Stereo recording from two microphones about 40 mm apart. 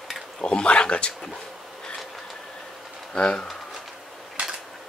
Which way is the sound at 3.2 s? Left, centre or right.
Left.